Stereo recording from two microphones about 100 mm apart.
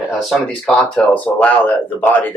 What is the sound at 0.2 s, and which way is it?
Speech, 5° left (ahead or behind).